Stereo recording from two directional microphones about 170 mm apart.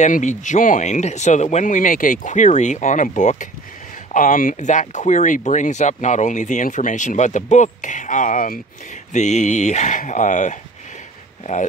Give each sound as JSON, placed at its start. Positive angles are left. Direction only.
{"t": 0.0, "sound": "speech", "side_deg": 45}